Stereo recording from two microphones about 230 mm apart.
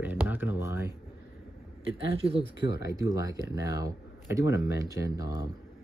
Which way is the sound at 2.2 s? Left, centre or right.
Right.